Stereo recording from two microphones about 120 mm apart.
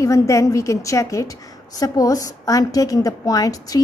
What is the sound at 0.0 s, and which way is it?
A woman's voice, 25° left (ahead or behind).